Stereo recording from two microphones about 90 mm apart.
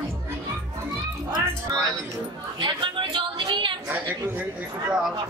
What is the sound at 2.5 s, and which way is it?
A woman's voice, 65° right (ahead or behind).